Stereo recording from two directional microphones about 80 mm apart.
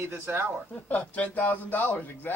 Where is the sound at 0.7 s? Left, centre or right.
Centre.